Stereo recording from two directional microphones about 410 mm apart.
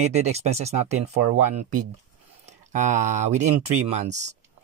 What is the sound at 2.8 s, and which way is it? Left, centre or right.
Speech, centre.